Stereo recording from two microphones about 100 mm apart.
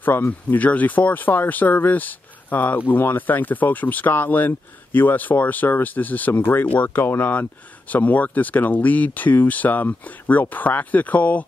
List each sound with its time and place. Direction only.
0.0 s speech: 20° left (ahead or behind)